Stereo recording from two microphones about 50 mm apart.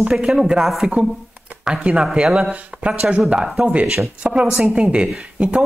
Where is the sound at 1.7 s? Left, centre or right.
Centre.